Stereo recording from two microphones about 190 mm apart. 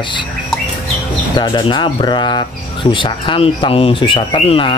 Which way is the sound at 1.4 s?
25° left (ahead or behind).